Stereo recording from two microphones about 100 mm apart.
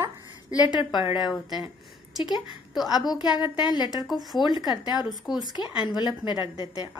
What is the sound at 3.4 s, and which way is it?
Speech, 50° left (ahead or behind).